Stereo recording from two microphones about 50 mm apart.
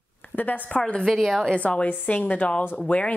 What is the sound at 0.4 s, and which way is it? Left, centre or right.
Speech, left.